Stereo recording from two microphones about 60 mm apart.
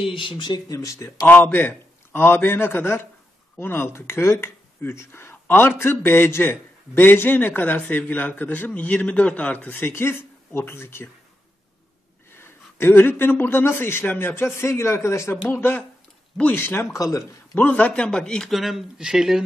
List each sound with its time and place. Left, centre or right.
0.7 s speech: left
1.2 s a man's voice: left
9.8 s speech: left
12.4 s speech: left
15.5 s speech: left
16.9 s speech: left
17.6 s speech: left
18.5 s speech: centre